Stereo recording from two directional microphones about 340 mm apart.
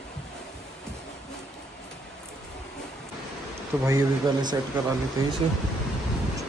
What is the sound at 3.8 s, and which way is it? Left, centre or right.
Speech, centre.